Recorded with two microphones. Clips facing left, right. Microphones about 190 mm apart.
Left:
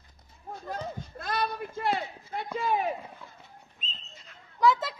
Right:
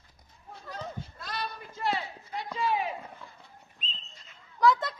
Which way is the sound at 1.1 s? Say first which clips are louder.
Left 11 dB; 55° left (ahead or behind).